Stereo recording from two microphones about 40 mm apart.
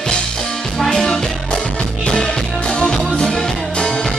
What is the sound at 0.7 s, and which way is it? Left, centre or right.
Music, centre.